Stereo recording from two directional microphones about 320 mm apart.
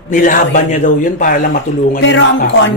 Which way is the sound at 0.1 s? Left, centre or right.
Left.